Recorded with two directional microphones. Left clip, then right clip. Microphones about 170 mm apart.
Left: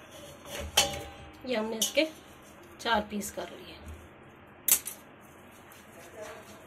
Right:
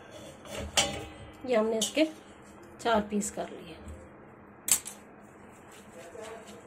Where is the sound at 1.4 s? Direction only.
55° right (ahead or behind).